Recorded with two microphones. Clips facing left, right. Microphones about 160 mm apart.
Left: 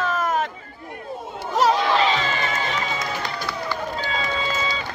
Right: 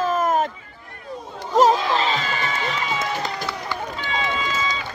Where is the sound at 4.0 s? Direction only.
40° left (ahead or behind).